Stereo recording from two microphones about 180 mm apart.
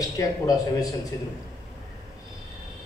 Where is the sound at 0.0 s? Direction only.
20° left (ahead or behind).